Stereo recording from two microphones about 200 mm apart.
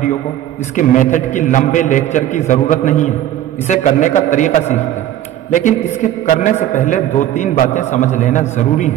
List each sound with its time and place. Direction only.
0.7 s a man's voice: 40° left (ahead or behind)